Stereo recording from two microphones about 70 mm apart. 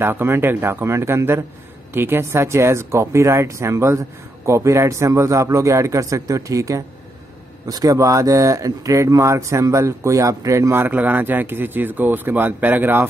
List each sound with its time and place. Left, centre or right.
0.0 s speech: right
10.9 s speech: right